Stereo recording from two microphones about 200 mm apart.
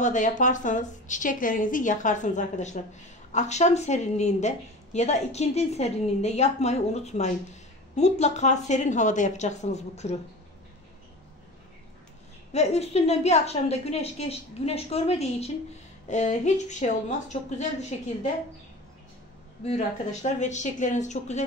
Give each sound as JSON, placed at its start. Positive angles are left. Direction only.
{"t": 0.0, "sound": "a woman's voice", "side_deg": 40}
{"t": 12.5, "sound": "a woman's voice", "side_deg": 35}
{"t": 19.6, "sound": "a woman's voice", "side_deg": 35}